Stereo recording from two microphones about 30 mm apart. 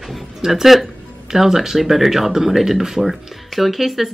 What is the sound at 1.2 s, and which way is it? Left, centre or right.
Speech, centre.